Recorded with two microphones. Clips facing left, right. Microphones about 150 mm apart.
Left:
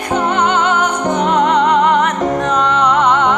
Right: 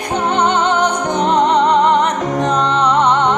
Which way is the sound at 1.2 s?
30° right (ahead or behind).